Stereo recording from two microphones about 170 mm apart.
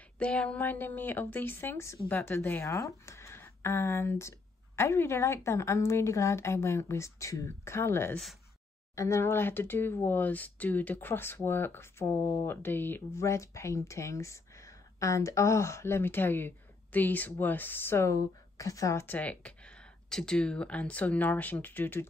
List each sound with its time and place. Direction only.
0.2 s speech: 5° left (ahead or behind)